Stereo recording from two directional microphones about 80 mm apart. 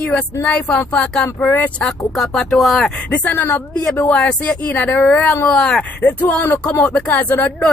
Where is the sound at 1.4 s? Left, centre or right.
Left.